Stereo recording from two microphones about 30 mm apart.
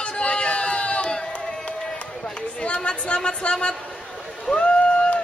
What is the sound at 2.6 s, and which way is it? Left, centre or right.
Speech, left.